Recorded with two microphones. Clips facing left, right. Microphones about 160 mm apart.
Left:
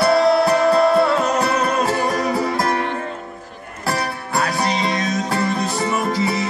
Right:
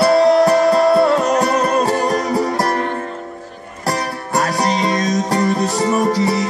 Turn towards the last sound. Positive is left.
turn(degrees=-40)  # may be behind; listen again after turning